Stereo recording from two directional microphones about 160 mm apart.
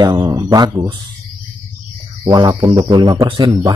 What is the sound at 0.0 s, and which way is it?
Speech, 25° right (ahead or behind).